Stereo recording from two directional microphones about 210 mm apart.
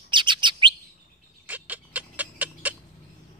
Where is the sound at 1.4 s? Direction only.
5° right (ahead or behind).